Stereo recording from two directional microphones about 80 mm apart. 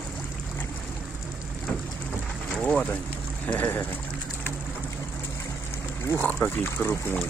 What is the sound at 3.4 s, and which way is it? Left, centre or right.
Boat, left.